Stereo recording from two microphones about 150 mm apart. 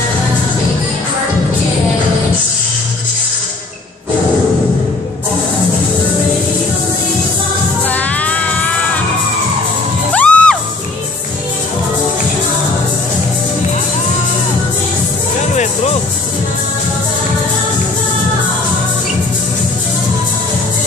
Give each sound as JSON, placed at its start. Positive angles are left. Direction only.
{"t": 7.9, "sound": "music", "side_deg": 10}
{"t": 10.1, "sound": "music", "side_deg": 10}
{"t": 15.5, "sound": "music", "side_deg": 50}